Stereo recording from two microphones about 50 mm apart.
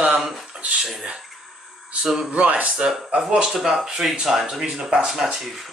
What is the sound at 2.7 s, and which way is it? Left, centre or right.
Speech, centre.